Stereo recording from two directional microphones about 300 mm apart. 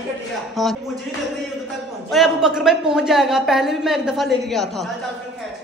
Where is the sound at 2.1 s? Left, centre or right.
Centre.